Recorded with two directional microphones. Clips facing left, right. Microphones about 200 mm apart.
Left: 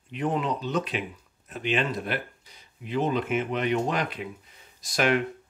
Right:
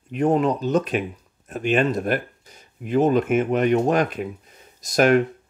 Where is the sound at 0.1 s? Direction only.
45° right (ahead or behind).